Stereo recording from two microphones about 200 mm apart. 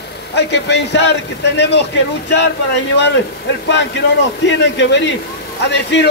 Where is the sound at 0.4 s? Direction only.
60° left (ahead or behind).